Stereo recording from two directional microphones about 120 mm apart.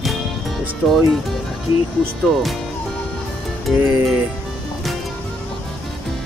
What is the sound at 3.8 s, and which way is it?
Speech, 20° right (ahead or behind).